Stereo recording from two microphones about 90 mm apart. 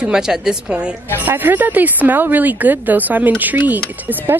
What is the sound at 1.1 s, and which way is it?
Speech, 20° right (ahead or behind).